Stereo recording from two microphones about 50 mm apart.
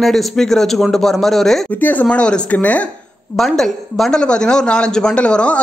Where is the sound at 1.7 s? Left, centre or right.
Left.